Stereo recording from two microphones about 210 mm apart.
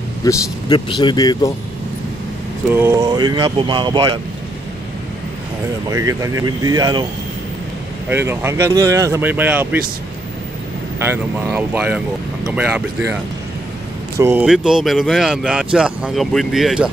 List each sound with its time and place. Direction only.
0.2 s speech: 20° left (ahead or behind)
2.7 s speech: 10° right (ahead or behind)
5.9 s speech: 15° right (ahead or behind)
8.1 s speech: 10° right (ahead or behind)
11.0 s speech: 10° right (ahead or behind)
14.1 s speech: 10° right (ahead or behind)